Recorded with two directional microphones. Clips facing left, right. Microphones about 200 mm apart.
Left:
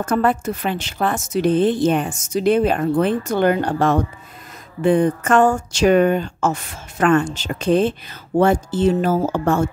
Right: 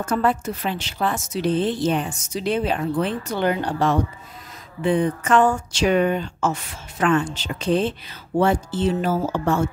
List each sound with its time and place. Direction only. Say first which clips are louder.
0.0 s a woman's voice: left 3 dB; 55° left (ahead or behind)